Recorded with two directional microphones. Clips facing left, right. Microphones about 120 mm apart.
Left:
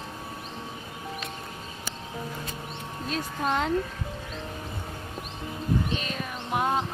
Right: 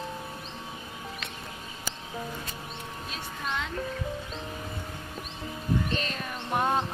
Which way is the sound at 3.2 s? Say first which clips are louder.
Left 7 dB; 45° left (ahead or behind).